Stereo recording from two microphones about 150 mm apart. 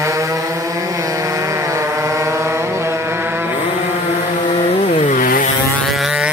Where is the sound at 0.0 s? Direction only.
20° right (ahead or behind).